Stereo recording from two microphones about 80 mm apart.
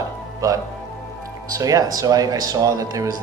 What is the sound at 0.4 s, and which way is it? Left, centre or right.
Speech, right.